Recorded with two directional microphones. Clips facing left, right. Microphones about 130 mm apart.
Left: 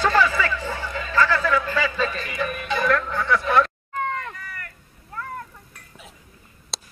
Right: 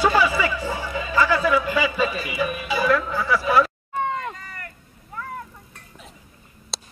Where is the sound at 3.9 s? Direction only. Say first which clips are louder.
Right 2 dB; 20° right (ahead or behind).